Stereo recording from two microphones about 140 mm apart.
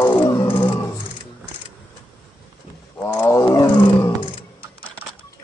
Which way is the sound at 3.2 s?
20° left (ahead or behind).